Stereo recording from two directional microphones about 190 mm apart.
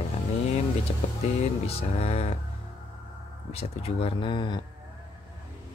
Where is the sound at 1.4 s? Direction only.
30° left (ahead or behind).